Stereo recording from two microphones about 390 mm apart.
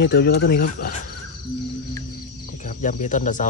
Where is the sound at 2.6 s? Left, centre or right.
Centre.